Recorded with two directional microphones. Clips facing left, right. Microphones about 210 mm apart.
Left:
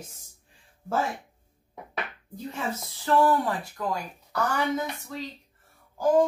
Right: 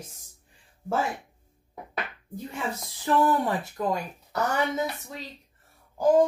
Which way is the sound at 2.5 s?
20° right (ahead or behind).